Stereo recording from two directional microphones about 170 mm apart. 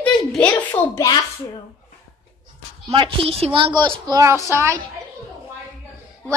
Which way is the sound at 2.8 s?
30° right (ahead or behind).